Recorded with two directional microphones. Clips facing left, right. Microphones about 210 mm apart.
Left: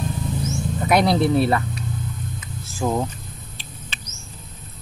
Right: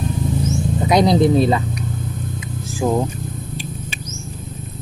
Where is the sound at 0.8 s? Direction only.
15° right (ahead or behind).